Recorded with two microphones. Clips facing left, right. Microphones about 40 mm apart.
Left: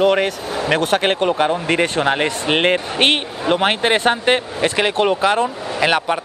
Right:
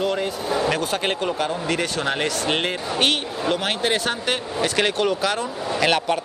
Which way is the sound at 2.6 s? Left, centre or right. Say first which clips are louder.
Left 6 dB; left.